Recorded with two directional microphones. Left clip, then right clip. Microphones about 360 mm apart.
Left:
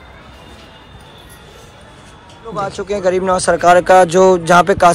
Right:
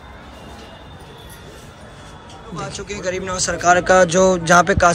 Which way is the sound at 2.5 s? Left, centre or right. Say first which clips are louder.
Left 9 dB; centre.